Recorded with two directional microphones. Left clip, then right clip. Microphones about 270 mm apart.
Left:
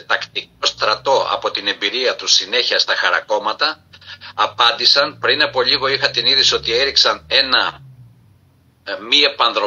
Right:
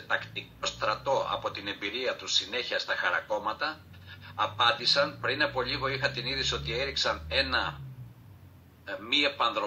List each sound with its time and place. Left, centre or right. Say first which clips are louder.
0.1 s speech: left 12 dB; left
8.8 s a man's voice: left 13 dB; left